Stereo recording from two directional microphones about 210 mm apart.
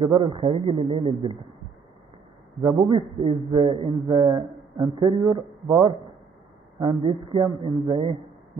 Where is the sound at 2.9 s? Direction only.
25° right (ahead or behind).